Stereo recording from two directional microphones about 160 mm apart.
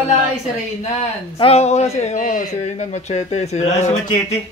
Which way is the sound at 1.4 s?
40° left (ahead or behind).